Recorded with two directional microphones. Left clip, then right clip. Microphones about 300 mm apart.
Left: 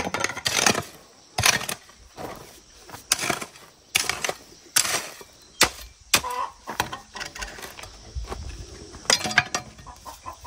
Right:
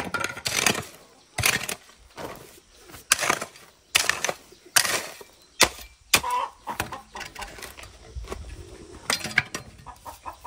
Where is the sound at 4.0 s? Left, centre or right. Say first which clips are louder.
Right 2 dB; centre.